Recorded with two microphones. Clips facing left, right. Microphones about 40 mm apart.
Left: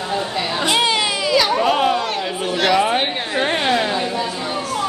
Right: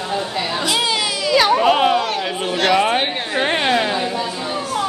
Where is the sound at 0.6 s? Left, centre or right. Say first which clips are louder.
Left 3 dB; left.